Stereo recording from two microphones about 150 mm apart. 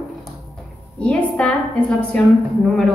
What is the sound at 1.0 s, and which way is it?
A woman's voice, 5° left (ahead or behind).